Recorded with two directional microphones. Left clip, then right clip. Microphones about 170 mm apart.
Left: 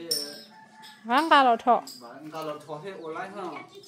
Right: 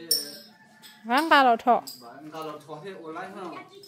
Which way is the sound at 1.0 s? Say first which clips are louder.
Even; 15° right (ahead or behind).